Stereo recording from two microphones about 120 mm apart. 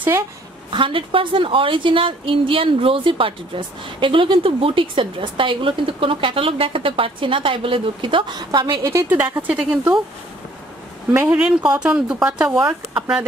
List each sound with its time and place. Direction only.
0.7 s a woman's voice: 45° right (ahead or behind)
8.8 s speech: 20° right (ahead or behind)
11.1 s speech: 10° right (ahead or behind)